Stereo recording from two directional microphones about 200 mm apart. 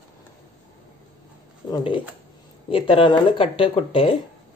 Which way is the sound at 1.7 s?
25° left (ahead or behind).